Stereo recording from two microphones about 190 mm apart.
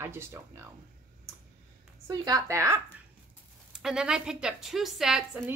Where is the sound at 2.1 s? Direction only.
20° right (ahead or behind).